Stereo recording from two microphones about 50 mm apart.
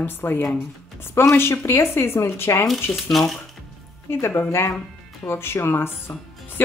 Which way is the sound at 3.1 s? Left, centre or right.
Centre.